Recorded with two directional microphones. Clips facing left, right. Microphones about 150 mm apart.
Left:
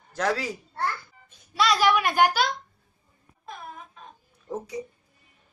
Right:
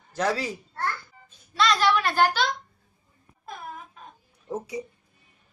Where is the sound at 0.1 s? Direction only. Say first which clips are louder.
Even; 5° right (ahead or behind).